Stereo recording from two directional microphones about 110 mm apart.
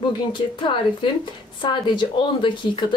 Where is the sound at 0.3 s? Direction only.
45° left (ahead or behind).